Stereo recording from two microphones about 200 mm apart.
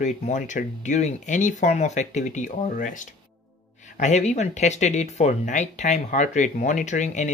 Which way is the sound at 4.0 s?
35° left (ahead or behind).